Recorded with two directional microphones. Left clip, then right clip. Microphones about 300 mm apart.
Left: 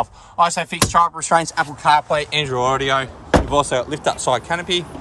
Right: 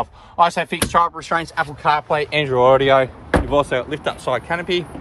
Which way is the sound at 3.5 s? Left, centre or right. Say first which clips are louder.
Even; centre.